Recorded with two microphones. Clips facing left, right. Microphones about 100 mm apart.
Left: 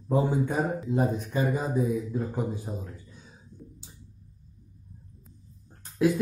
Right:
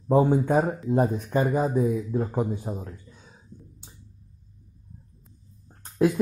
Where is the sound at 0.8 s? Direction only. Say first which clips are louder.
Right 3 dB; 50° right (ahead or behind).